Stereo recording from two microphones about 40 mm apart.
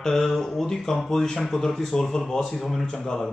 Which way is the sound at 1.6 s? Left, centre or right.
Centre.